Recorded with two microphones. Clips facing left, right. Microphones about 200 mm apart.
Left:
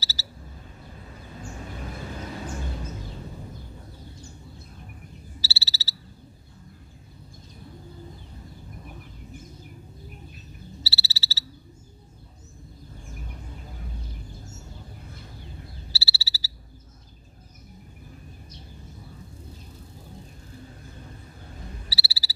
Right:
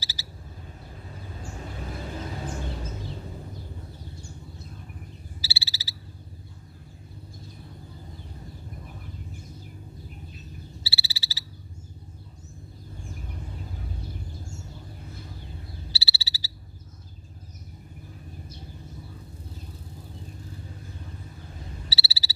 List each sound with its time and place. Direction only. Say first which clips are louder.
0.0 s a sound: left 1 dB; 15° right (ahead or behind)
5.4 s frog: left 1 dB; 15° right (ahead or behind)
10.8 s frog: left 2 dB; 15° right (ahead or behind)
15.9 s frog: even; 20° right (ahead or behind)
21.8 s frog: right 1 dB; 20° right (ahead or behind)